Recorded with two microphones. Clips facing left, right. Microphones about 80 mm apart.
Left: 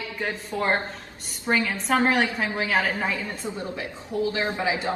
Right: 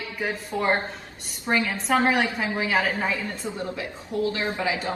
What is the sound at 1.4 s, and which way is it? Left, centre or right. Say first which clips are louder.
Speech: even; centre.